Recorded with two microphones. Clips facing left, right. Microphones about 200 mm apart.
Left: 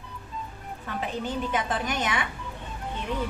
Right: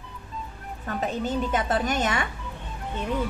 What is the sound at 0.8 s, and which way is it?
A woman's voice, 45° right (ahead or behind).